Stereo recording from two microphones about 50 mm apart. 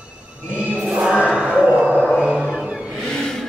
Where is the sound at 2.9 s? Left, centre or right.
Centre.